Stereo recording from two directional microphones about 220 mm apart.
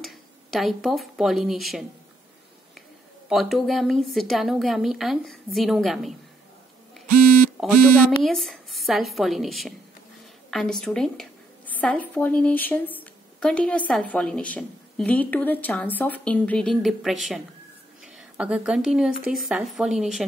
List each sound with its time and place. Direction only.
0.0 s speech: centre (ahead or behind)
3.3 s a woman's voice: centre (ahead or behind)
7.6 s a woman's voice: centre (ahead or behind)